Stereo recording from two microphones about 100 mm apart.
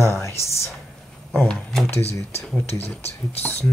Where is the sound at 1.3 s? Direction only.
5° left (ahead or behind).